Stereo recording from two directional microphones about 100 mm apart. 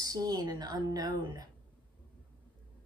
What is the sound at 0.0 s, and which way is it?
Speech, 40° right (ahead or behind).